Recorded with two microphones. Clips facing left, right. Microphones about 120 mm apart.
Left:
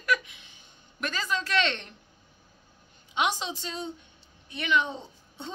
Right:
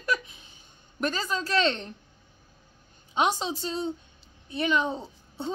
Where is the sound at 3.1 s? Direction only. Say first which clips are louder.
Right 3 dB; 40° right (ahead or behind).